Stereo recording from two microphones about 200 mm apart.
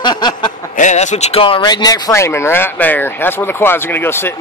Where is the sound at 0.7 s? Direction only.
35° left (ahead or behind); by 4.4 s 10° left (ahead or behind).